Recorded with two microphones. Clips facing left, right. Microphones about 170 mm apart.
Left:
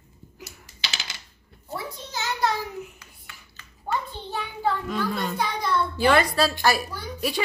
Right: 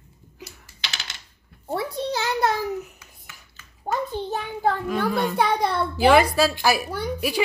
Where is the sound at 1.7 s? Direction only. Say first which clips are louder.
Right 8 dB; 65° right (ahead or behind).